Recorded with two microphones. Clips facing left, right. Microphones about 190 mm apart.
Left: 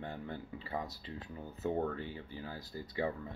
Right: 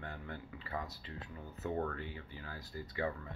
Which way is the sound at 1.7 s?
20° left (ahead or behind).